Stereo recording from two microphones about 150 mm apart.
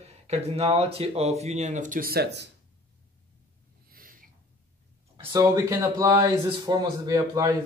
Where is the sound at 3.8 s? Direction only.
70° right (ahead or behind).